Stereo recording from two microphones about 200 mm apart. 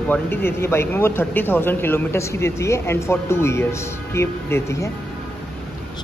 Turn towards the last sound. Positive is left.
turn(degrees=15)  # may be behind; listen again after turning